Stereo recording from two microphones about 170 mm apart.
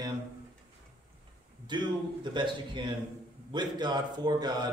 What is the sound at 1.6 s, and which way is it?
A man's voice, 25° right (ahead or behind).